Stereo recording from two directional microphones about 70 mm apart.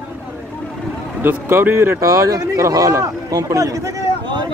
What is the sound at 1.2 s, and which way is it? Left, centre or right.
Speech, right.